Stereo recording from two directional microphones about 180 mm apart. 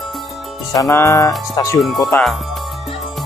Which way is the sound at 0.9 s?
15° left (ahead or behind).